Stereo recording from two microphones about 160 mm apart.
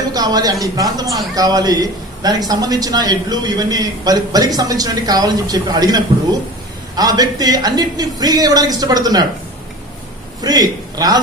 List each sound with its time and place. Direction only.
0.1 s a man's voice: 25° right (ahead or behind)
10.4 s a man's voice: 25° right (ahead or behind)